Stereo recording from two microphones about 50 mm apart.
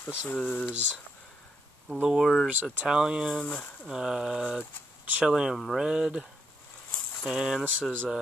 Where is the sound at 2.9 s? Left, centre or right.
Centre.